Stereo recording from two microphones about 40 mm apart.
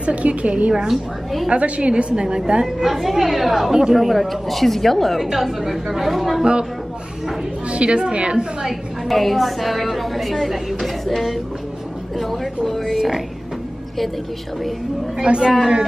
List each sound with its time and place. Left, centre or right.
0.0 s a woman's voice: right
0.8 s a woman's voice: centre
1.5 s a woman's voice: right
2.8 s a woman's voice: centre
7.7 s a woman's voice: right
8.6 s a woman's voice: centre
12.6 s a woman's voice: centre
15.2 s a woman's voice: right